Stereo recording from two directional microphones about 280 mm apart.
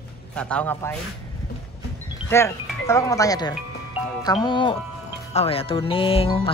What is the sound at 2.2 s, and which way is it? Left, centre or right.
Speech, centre.